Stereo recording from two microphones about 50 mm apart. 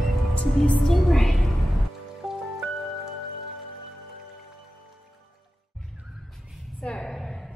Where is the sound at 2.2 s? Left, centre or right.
Centre.